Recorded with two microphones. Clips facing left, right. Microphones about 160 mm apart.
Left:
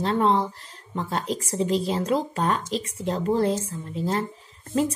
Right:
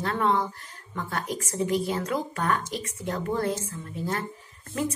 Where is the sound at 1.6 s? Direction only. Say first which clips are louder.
Left 2 dB; 30° left (ahead or behind).